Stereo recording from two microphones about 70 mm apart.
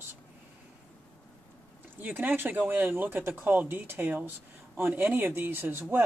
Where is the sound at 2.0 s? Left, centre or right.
Right.